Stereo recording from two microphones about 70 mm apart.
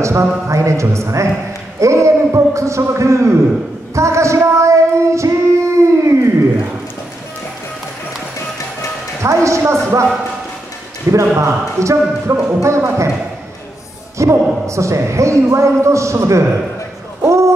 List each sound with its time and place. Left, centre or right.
0.0 s speech: right
1.8 s a sound: right
3.9 s child singing: right
9.2 s speech: right
11.1 s speech: right
14.1 s speech: right
17.2 s a sound: right